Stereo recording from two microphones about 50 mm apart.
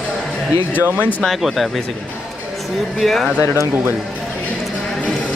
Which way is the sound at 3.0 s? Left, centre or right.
Centre.